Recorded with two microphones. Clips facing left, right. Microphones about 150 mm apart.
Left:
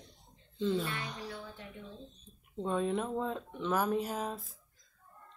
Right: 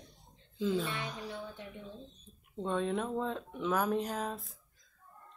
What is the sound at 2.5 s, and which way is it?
Speech, 5° left (ahead or behind).